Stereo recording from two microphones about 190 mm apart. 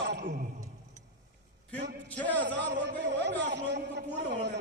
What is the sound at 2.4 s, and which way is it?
Speech, 70° right (ahead or behind).